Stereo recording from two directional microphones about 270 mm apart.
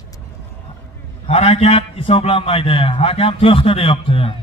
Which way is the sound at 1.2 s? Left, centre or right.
Left.